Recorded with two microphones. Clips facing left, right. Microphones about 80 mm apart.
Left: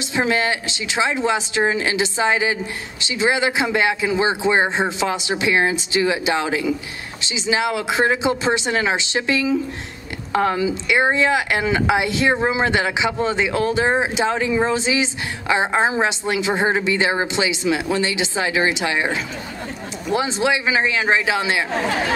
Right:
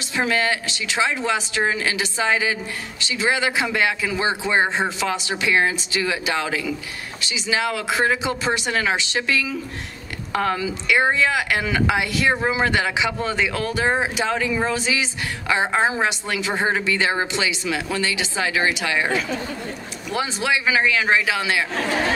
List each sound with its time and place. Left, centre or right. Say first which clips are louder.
0.1 s speech: left 1 dB; left